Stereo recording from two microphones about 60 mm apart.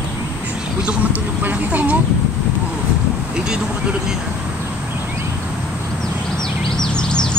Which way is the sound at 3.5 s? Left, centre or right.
Centre.